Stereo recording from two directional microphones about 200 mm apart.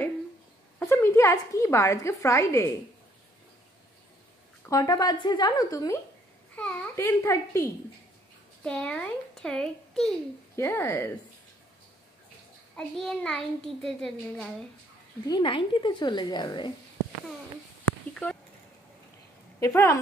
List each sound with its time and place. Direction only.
0.7 s a woman's voice: 15° left (ahead or behind)
4.6 s a woman's voice: 20° left (ahead or behind)
6.5 s a child's voice: 5° left (ahead or behind)
10.5 s a child's voice: 15° left (ahead or behind)
12.7 s a child's voice: 5° left (ahead or behind)
15.2 s a woman's voice: 25° left (ahead or behind)
18.1 s a sound: 5° left (ahead or behind)
19.6 s a child's voice: 15° left (ahead or behind)